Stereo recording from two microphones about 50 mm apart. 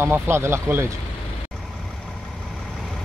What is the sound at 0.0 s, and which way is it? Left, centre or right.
Speech, right.